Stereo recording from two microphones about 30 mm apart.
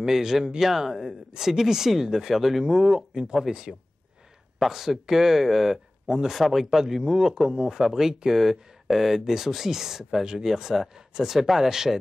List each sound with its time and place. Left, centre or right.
0.0 s speech: centre
2.6 s speech: right